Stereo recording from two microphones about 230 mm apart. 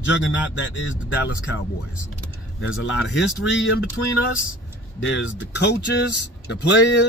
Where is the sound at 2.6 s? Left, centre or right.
Left.